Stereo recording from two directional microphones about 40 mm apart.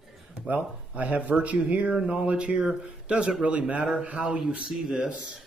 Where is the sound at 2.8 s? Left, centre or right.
Right.